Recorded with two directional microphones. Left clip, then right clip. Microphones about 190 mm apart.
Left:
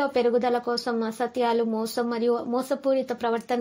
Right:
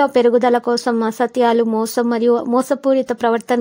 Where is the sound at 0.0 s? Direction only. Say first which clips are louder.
Right 9 dB; 50° right (ahead or behind).